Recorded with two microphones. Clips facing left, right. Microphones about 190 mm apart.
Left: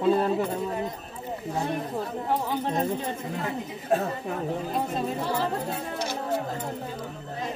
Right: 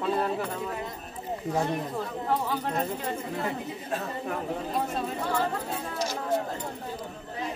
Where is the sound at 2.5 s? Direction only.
20° left (ahead or behind).